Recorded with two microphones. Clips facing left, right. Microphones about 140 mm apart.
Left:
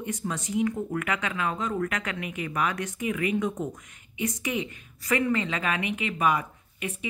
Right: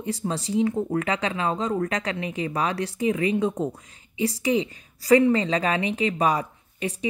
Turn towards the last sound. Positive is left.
turn(degrees=-35)  # may be behind; listen again after turning